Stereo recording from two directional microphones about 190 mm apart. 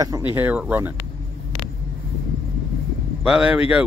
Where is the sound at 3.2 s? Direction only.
5° right (ahead or behind).